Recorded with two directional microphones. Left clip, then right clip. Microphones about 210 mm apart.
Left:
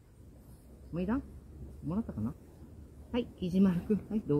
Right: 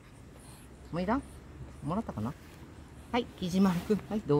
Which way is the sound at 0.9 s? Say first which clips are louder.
Right 4 dB; 40° right (ahead or behind).